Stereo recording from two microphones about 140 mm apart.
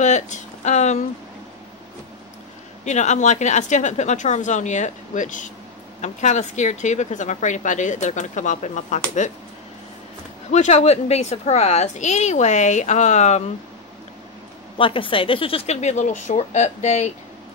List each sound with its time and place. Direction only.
0.0 s speech: 60° left (ahead or behind)
2.8 s speech: 55° left (ahead or behind)
10.5 s speech: 55° left (ahead or behind)
14.8 s speech: 40° left (ahead or behind); by 17.1 s 55° left (ahead or behind)